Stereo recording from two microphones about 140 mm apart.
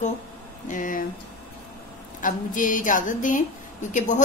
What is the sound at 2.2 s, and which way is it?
A woman's voice, 70° left (ahead or behind).